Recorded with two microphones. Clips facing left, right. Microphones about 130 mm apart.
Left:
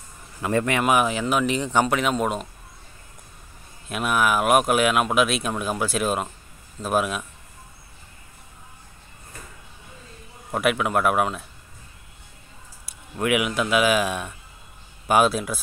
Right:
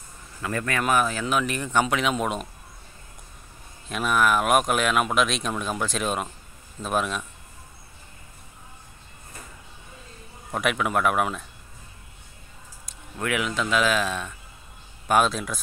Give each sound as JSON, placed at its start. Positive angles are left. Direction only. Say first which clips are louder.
{"t": 0.4, "sound": "a man's voice", "louder": "left 5 dB", "side_deg": 25}
{"t": 0.8, "sound": "speech", "louder": "left 3 dB", "side_deg": 15}
{"t": 1.9, "sound": "speech", "louder": "left 2 dB", "side_deg": 5}
{"t": 3.9, "sound": "speech", "louder": "even", "side_deg": 5}
{"t": 10.5, "sound": "speech", "louder": "left 3 dB", "side_deg": 5}
{"t": 12.8, "sound": "speech", "louder": "left 5 dB", "side_deg": 10}